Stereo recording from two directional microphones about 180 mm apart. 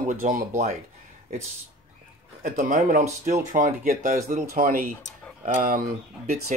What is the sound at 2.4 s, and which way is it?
Speech, 50° right (ahead or behind).